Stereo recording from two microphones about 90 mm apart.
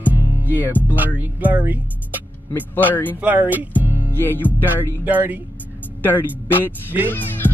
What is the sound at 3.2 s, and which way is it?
Speech, 20° right (ahead or behind).